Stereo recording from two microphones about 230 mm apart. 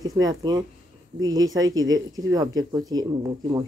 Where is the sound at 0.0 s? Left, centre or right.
Centre.